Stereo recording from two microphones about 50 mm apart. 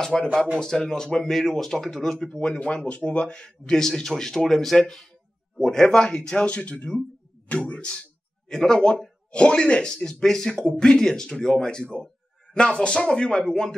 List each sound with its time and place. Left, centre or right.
0.0 s speech: centre